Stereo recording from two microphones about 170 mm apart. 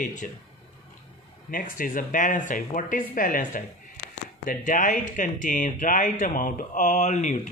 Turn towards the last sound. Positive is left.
turn(degrees=45)  # may be behind; listen again after turning